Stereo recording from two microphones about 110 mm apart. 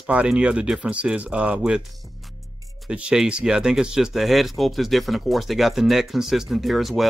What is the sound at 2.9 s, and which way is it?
Speech, 10° right (ahead or behind).